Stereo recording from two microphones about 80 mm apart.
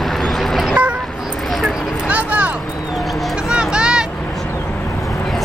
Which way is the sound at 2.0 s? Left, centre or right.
Centre.